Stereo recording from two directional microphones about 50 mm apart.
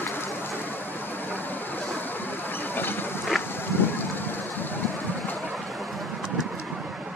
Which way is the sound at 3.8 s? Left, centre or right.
Left.